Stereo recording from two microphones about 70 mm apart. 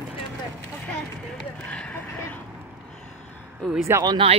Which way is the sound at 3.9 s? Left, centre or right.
Right.